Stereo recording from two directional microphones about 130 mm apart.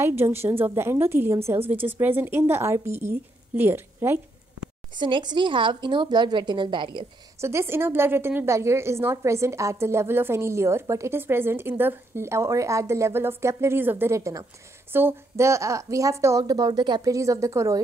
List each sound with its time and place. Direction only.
0.0 s a woman's voice: 20° right (ahead or behind)
4.9 s speech: 35° right (ahead or behind)
7.3 s a woman's voice: 20° right (ahead or behind)